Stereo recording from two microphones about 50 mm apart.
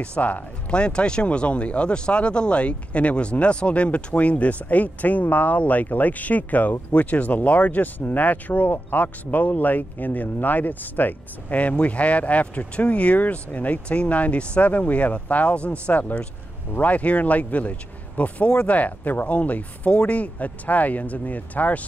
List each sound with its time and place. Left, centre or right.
0.0 s speech: left